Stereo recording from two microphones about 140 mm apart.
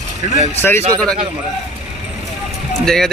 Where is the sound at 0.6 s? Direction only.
15° left (ahead or behind).